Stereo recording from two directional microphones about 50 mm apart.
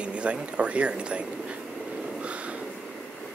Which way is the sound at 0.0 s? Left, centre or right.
Right.